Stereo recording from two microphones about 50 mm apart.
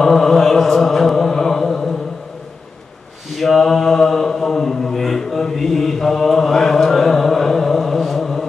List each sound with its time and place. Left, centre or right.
0.0 s mantra: centre
3.3 s mantra: centre